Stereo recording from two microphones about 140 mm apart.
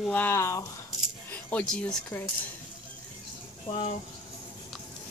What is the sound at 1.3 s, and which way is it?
Speech, 10° left (ahead or behind).